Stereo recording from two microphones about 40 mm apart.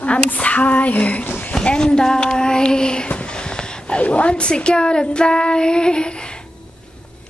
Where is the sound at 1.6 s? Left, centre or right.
Left.